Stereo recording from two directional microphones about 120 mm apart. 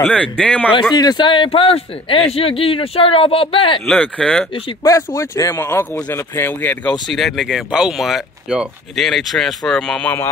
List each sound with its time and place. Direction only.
0.0 s speech: 10° left (ahead or behind)
0.9 s a man's voice: 35° left (ahead or behind)
3.8 s speech: 10° left (ahead or behind)
4.8 s speech: 25° left (ahead or behind)
6.9 s speech: centre (ahead or behind)